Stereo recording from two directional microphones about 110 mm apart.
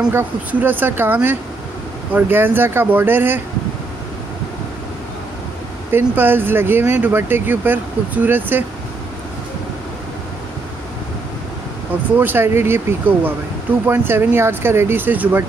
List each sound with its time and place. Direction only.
0.1 s speech: 15° right (ahead or behind)
5.9 s speech: 20° right (ahead or behind)
12.2 s speech: 20° right (ahead or behind)